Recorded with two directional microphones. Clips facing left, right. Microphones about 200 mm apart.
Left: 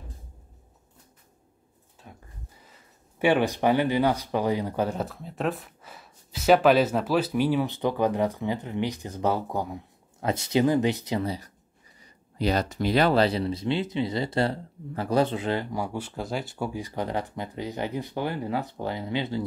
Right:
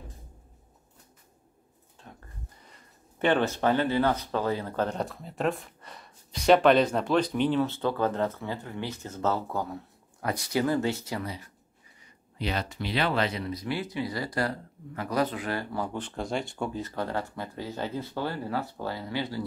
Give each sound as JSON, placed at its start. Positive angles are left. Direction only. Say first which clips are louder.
{"t": 2.0, "sound": "a sound", "louder": "left 1 dB", "side_deg": 10}
{"t": 2.6, "sound": "speech", "louder": "even", "side_deg": 5}
{"t": 11.2, "sound": "speech", "louder": "left 6 dB", "side_deg": 35}